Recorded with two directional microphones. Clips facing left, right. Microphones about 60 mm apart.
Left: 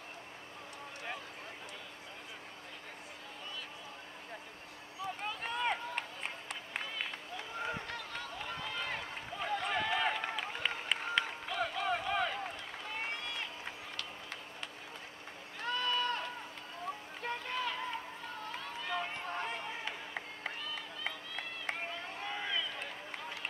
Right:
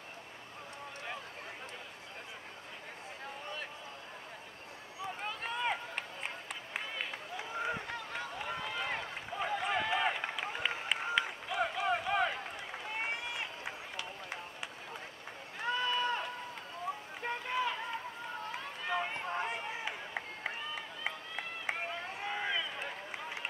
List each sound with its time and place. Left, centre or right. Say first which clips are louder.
5.2 s run: even; centre
15.6 s run: right 1 dB; centre